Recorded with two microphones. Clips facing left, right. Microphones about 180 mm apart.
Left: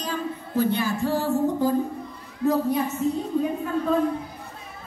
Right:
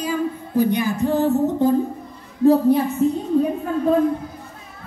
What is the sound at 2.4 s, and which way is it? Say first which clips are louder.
Speech: right 7 dB; 30° right (ahead or behind).